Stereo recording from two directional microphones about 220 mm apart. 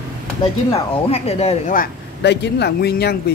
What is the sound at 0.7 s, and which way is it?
Speech, 25° left (ahead or behind).